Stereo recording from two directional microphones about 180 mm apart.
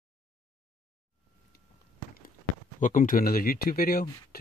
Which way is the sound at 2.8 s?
45° left (ahead or behind).